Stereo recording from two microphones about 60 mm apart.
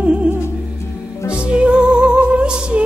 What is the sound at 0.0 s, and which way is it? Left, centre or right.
Music, centre.